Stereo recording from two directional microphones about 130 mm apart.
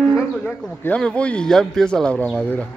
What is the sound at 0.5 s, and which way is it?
Speech, 5° left (ahead or behind).